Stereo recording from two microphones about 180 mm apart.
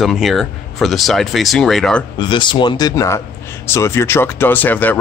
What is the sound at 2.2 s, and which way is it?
Speech, 25° left (ahead or behind).